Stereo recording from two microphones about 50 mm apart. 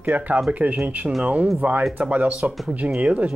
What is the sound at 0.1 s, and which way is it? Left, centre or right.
Speech, right.